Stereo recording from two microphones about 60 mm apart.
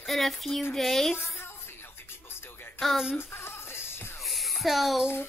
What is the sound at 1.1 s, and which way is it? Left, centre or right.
Speech, left.